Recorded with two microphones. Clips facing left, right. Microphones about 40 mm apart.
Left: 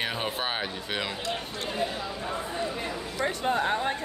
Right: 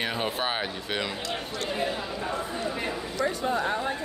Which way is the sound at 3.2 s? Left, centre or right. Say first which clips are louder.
Even; left.